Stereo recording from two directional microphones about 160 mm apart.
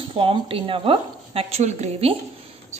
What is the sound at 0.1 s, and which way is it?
A woman's voice, 35° right (ahead or behind).